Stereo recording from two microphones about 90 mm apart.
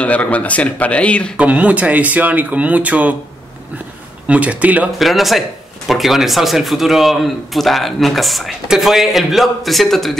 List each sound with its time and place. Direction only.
0.0 s speech: 15° left (ahead or behind)
1.4 s speech: 15° right (ahead or behind)
4.3 s speech: 15° right (ahead or behind)
4.9 s a man's voice: centre (ahead or behind)